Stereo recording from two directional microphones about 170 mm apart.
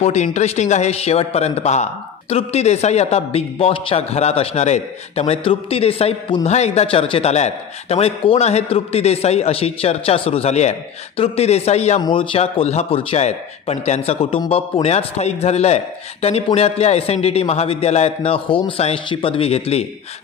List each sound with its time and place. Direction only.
0.0 s speech: 40° left (ahead or behind)